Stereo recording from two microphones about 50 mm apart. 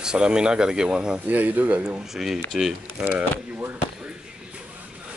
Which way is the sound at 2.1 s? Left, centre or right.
Centre.